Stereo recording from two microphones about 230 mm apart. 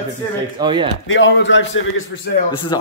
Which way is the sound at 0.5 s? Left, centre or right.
Right.